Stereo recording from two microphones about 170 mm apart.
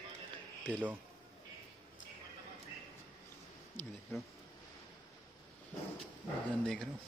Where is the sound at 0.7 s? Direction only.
5° left (ahead or behind).